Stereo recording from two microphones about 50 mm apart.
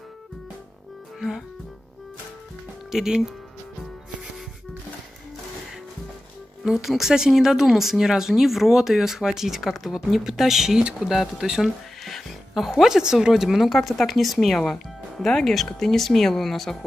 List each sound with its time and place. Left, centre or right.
2.9 s speech: centre
6.6 s speech: centre
12.0 s a woman's voice: centre